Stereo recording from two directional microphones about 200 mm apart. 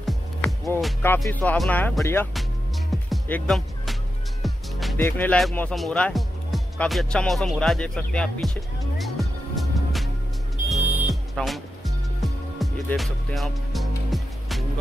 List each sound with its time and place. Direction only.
0.0 s music: centre (ahead or behind)
1.2 s speech: 10° left (ahead or behind)
3.1 s music: 5° left (ahead or behind)
4.9 s speech: 10° left (ahead or behind)
10.7 s music: centre (ahead or behind)